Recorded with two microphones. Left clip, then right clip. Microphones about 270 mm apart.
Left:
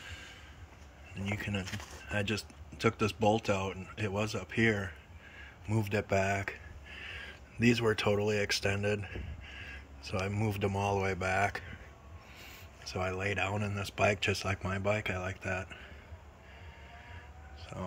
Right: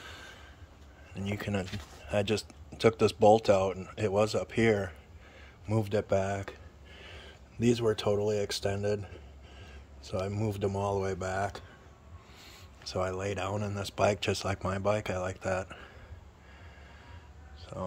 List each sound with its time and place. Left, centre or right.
0.0 s a sound: centre
1.1 s speech: centre
12.8 s speech: centre
17.7 s speech: centre